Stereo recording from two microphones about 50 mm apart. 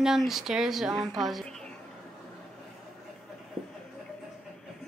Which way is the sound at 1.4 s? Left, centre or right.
Centre.